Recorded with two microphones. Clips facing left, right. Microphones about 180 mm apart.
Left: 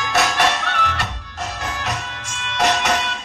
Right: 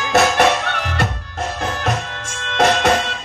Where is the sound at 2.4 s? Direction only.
55° right (ahead or behind).